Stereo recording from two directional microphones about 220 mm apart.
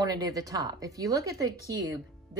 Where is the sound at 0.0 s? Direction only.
15° right (ahead or behind).